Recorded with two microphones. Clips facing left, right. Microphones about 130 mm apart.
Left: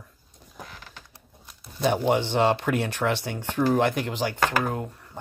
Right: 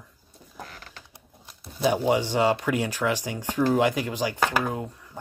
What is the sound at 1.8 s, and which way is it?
Speech, 5° right (ahead or behind).